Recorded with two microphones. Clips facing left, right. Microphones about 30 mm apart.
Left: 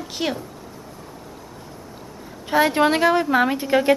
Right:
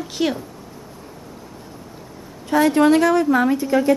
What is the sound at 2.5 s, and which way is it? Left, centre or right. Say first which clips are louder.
A woman's voice: right 3 dB; left.